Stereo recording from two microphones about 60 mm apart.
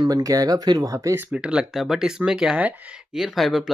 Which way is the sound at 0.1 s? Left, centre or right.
Right.